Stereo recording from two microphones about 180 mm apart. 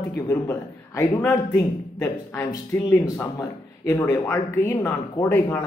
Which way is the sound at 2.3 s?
15° left (ahead or behind).